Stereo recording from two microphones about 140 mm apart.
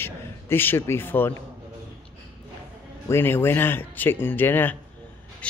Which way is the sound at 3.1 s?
15° left (ahead or behind).